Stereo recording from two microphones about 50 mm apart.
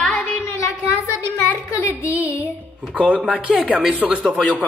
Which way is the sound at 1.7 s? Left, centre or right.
Left.